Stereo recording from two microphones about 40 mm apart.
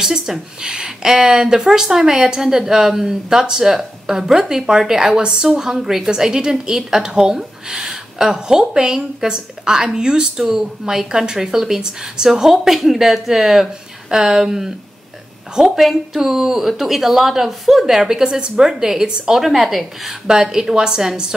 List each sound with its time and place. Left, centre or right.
0.0 s a woman's voice: centre
10.4 s a woman's voice: centre
15.8 s a woman's voice: centre
19.4 s a woman's voice: centre